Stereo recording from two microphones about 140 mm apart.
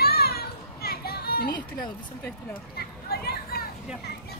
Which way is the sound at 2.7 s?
90° left.